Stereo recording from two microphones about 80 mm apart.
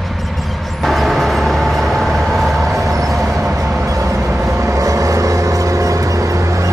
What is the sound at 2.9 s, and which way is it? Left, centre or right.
Vehicle, right.